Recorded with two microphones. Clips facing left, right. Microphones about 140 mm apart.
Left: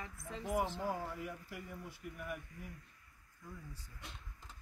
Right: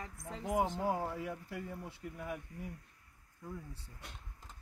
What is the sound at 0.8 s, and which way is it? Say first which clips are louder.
Speech: right 4 dB; 25° right (ahead or behind).